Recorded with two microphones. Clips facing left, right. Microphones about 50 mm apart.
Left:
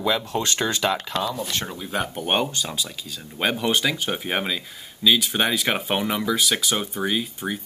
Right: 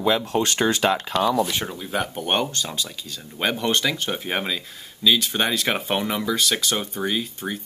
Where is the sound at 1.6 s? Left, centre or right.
Centre.